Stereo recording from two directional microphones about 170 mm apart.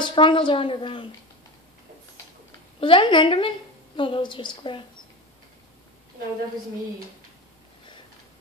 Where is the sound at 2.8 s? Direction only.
30° left (ahead or behind).